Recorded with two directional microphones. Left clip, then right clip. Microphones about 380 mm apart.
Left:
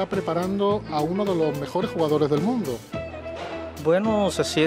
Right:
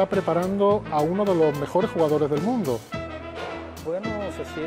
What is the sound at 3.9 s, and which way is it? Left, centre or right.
Speech, left.